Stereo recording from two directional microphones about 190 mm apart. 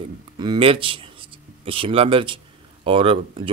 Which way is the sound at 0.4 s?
25° right (ahead or behind).